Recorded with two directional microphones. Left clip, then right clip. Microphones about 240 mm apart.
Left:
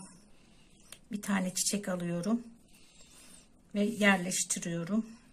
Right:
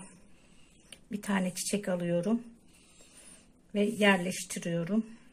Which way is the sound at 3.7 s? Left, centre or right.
Right.